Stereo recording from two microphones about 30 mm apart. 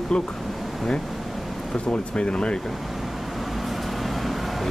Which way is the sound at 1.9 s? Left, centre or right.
Left.